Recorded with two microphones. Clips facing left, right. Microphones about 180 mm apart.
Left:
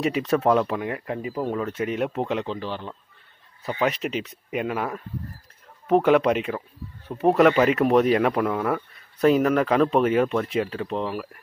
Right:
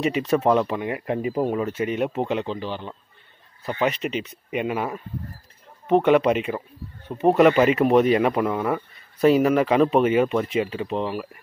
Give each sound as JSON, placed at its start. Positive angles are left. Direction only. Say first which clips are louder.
{"t": 0.0, "sound": "speech", "louder": "right 1 dB", "side_deg": 0}
{"t": 0.9, "sound": "speech", "louder": "right 4 dB", "side_deg": -20}
{"t": 1.7, "sound": "speech", "louder": "right 2 dB", "side_deg": 0}